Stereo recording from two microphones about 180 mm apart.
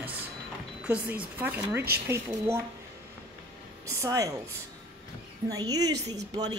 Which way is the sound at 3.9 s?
20° right (ahead or behind).